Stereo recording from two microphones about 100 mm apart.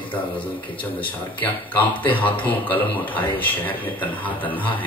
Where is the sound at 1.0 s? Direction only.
15° left (ahead or behind).